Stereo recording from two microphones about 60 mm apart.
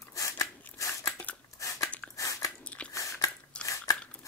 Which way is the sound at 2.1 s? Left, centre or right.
Left.